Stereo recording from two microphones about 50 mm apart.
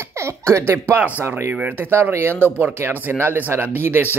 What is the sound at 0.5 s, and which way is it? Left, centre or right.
Speech, right.